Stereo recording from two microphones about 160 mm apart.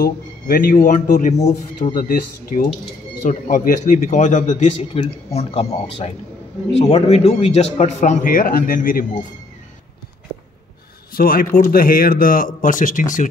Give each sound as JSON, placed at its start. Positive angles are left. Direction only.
{"t": 0.0, "sound": "a man's voice", "side_deg": 65}
{"t": 11.1, "sound": "speech", "side_deg": 65}